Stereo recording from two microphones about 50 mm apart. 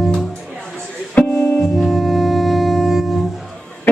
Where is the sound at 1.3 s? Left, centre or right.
Left.